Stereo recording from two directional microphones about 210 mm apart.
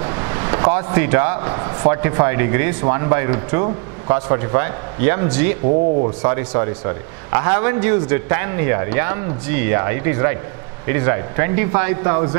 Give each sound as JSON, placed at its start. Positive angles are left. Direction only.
{"t": 0.0, "sound": "a man's voice", "side_deg": -20}
{"t": 5.7, "sound": "speech", "side_deg": -35}
{"t": 6.2, "sound": "a man's voice", "side_deg": -15}